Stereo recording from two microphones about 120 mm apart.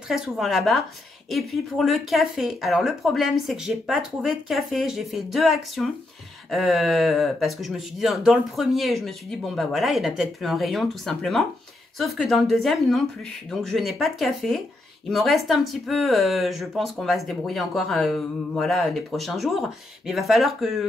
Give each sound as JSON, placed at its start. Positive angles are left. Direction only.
{"t": 0.1, "sound": "speech", "side_deg": 0}